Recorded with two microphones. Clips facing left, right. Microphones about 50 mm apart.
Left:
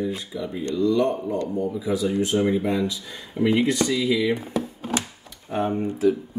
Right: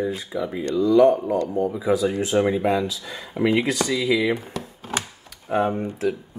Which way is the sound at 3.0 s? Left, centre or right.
Right.